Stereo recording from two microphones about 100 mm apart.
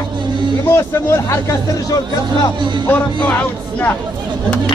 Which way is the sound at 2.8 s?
15° left (ahead or behind).